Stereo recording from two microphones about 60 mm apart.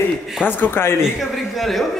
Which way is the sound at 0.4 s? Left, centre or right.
Left.